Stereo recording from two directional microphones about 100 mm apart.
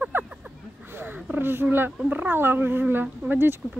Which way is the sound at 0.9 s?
20° right (ahead or behind).